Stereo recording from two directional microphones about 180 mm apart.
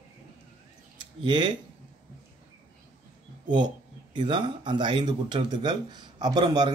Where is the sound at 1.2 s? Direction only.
25° right (ahead or behind).